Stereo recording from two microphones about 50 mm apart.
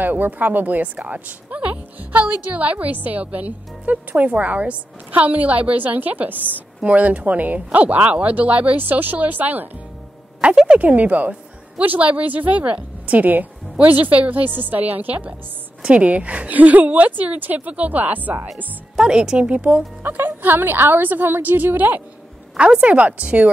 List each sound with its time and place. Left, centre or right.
0.0 s a woman's voice: right
10.4 s a woman's voice: centre
10.8 s a woman's voice: right
18.9 s a woman's voice: centre
20.0 s a woman's voice: right
22.6 s a woman's voice: right